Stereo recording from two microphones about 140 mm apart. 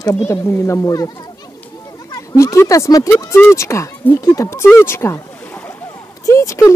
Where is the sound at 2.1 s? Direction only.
20° left (ahead or behind).